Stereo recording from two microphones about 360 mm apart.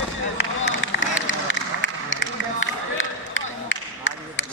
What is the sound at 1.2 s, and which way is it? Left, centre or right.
Run, left.